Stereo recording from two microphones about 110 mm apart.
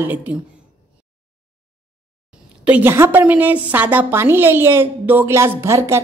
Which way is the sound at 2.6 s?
15° right (ahead or behind).